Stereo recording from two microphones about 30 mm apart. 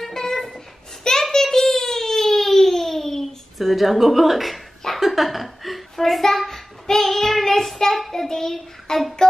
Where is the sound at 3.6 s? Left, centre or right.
Centre.